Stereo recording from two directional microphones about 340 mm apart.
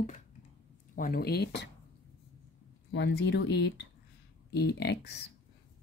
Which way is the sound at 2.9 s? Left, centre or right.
Left.